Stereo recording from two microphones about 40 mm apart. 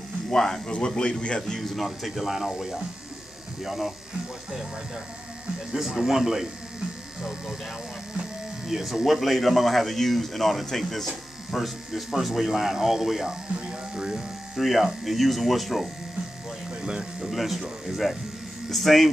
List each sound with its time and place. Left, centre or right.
0.3 s speech: centre
1.5 s speech: centre
5.7 s speech: centre
8.6 s speech: centre
13.6 s speech: right
14.5 s speech: centre
17.2 s speech: centre